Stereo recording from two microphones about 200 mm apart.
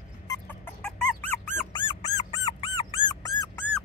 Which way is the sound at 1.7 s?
20° left (ahead or behind).